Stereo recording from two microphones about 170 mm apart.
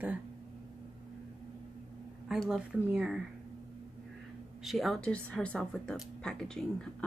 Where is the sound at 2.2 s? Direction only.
5° right (ahead or behind).